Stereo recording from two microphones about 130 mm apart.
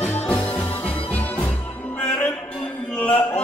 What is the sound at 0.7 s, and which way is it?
Music, 45° left (ahead or behind).